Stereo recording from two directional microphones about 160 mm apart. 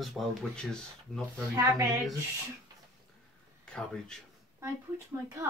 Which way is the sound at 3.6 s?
5° left (ahead or behind).